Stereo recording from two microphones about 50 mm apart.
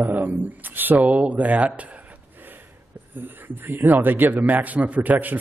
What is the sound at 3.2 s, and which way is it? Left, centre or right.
Speech, right.